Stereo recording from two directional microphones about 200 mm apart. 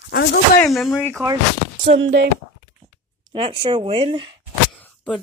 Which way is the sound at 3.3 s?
25° right (ahead or behind).